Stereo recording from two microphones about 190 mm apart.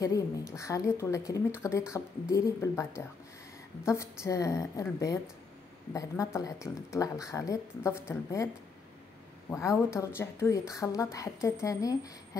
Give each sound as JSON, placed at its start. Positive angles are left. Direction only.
{"t": 0.0, "sound": "speech", "side_deg": 15}
{"t": 9.5, "sound": "speech", "side_deg": 15}